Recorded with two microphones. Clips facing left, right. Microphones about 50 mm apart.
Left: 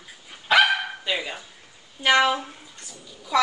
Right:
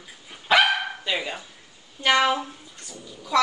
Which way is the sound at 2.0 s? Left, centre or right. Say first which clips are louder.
Left 1 dB; centre.